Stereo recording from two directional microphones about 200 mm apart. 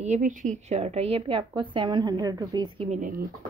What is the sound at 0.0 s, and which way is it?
A woman's voice, 35° right (ahead or behind).